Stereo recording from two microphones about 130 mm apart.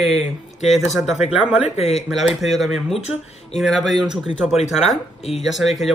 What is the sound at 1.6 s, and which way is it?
Speech, 60° left (ahead or behind).